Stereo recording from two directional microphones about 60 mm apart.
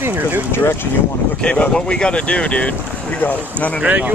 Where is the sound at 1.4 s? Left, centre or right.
Centre.